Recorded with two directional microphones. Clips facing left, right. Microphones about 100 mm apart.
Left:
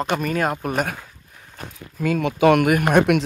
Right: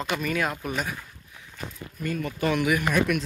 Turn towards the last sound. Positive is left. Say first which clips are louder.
# left 7 dB
turn(degrees=75)  # may be behind; listen again after turning